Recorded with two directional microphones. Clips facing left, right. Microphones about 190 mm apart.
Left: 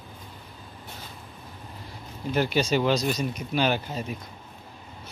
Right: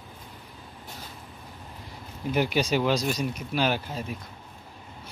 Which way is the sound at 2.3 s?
10° right (ahead or behind).